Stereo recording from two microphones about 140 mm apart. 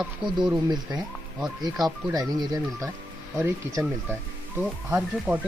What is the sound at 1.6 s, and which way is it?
Speech, 30° right (ahead or behind).